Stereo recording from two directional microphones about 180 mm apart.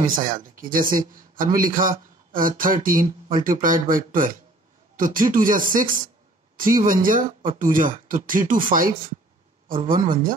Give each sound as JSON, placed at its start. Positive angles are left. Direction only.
{"t": 0.0, "sound": "speech", "side_deg": -50}